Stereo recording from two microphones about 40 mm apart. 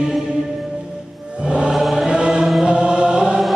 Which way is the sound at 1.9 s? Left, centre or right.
Centre.